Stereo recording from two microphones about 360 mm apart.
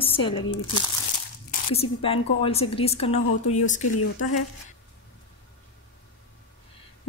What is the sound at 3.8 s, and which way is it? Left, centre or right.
Speech, left.